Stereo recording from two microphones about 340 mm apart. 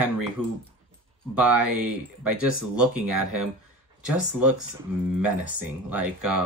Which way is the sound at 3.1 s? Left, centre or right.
Right.